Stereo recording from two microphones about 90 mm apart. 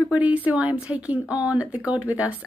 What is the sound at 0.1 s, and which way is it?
A woman's voice, 15° right (ahead or behind).